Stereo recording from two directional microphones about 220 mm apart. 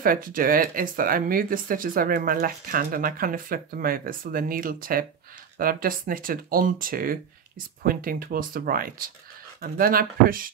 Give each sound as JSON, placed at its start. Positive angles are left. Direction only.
{"t": 0.0, "sound": "speech", "side_deg": -40}